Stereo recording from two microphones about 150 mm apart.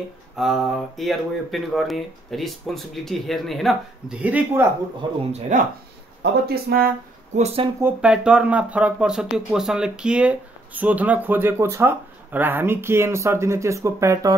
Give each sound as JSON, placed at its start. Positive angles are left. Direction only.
{"t": 0.4, "sound": "speech", "side_deg": 0}
{"t": 5.0, "sound": "speech", "side_deg": -30}
{"t": 5.5, "sound": "speech", "side_deg": -55}
{"t": 6.4, "sound": "speech", "side_deg": -85}
{"t": 7.3, "sound": "speech", "side_deg": -45}
{"t": 7.8, "sound": "speech", "side_deg": -5}